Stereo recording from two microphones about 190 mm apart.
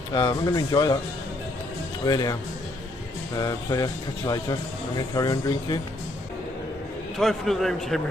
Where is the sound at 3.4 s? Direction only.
20° left (ahead or behind).